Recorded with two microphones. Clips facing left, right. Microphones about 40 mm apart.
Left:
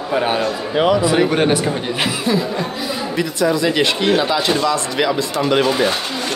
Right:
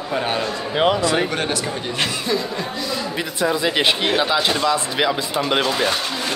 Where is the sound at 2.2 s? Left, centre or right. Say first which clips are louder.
Left 4 dB; centre.